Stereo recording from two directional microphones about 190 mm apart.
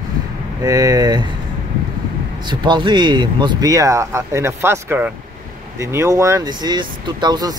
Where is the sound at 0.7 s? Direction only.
15° right (ahead or behind).